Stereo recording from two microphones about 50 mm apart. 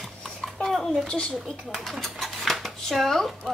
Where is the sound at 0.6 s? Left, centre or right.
Centre.